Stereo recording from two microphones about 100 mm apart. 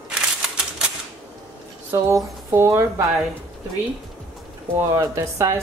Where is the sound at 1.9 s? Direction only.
25° right (ahead or behind).